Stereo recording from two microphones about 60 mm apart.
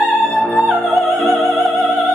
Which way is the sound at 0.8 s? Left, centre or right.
Centre.